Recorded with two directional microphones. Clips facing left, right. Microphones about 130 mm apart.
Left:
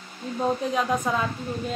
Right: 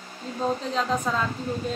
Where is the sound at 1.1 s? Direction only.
15° left (ahead or behind).